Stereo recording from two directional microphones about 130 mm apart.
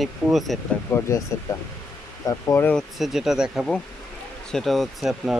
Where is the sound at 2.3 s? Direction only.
20° left (ahead or behind).